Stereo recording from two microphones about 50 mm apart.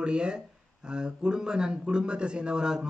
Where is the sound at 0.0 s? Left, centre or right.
Centre.